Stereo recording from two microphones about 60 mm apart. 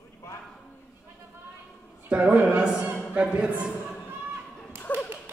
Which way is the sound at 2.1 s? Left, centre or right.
Centre.